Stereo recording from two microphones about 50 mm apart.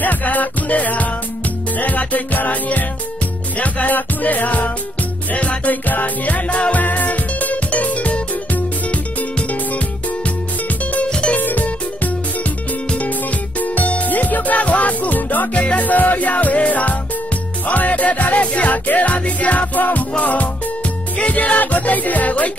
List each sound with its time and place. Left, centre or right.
0.0 s music: left
11.1 s music: centre
11.3 s music: left